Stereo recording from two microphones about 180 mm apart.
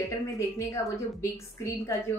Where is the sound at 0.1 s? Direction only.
15° left (ahead or behind).